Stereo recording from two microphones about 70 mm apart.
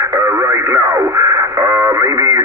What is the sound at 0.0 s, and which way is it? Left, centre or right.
Radio, right.